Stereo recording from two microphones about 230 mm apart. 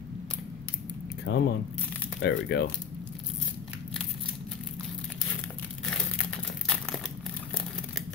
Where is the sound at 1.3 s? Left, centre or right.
Left.